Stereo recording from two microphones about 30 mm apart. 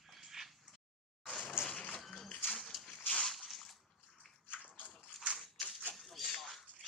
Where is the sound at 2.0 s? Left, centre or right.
Centre.